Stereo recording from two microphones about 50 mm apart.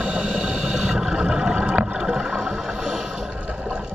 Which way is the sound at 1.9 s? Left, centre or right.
Centre.